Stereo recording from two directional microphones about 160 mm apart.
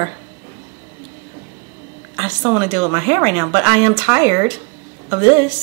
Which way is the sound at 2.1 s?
15° right (ahead or behind).